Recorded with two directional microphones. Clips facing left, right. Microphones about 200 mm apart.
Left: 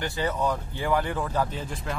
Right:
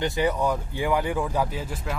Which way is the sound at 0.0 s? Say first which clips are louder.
Right 3 dB; 15° right (ahead or behind).